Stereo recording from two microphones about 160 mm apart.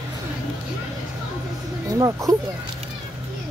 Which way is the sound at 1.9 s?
20° right (ahead or behind).